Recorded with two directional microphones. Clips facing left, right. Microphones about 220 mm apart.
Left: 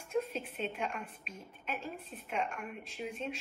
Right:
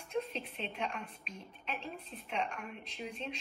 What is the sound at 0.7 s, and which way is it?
Speech, centre (ahead or behind).